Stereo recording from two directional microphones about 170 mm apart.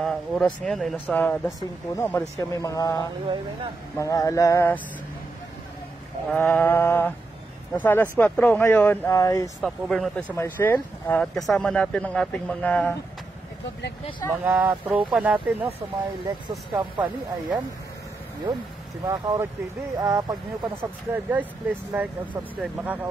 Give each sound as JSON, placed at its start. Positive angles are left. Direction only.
{"t": 0.0, "sound": "a sound", "side_deg": 0}
{"t": 0.7, "sound": "speech", "side_deg": 0}
{"t": 3.9, "sound": "mantra", "side_deg": 20}
{"t": 6.2, "sound": "speech", "side_deg": 10}
{"t": 9.6, "sound": "speech", "side_deg": 0}
{"t": 10.3, "sound": "speech", "side_deg": 15}
{"t": 14.3, "sound": "speech", "side_deg": -10}
{"t": 16.4, "sound": "speech", "side_deg": -25}
{"t": 19.0, "sound": "speech", "side_deg": -20}
{"t": 20.6, "sound": "speech", "side_deg": -10}